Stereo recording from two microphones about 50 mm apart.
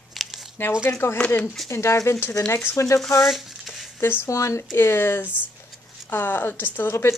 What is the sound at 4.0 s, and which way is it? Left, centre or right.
Speech, left.